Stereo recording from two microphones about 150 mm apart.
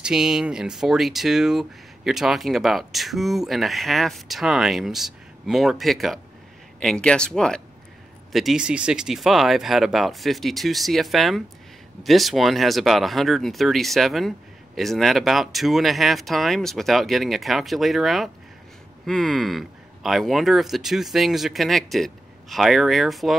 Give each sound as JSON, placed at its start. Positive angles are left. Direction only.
{"t": 0.0, "sound": "speech", "side_deg": -5}